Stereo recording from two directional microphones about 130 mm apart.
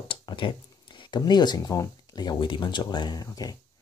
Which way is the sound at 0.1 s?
40° left (ahead or behind).